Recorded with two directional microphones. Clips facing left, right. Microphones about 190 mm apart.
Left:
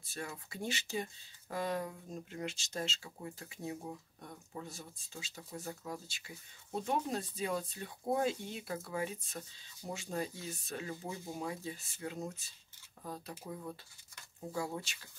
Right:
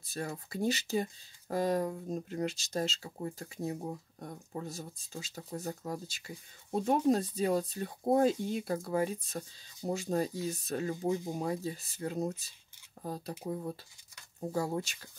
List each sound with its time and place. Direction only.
0.0 s speech: 40° right (ahead or behind)